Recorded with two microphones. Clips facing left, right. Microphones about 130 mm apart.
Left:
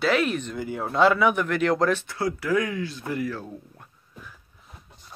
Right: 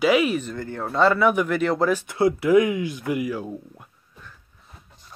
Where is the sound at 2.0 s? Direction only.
20° right (ahead or behind).